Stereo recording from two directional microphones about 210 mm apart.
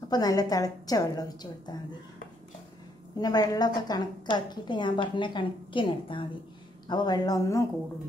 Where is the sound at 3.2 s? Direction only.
20° left (ahead or behind).